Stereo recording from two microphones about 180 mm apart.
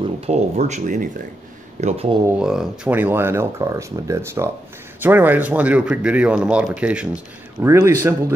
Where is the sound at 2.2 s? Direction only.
5° right (ahead or behind).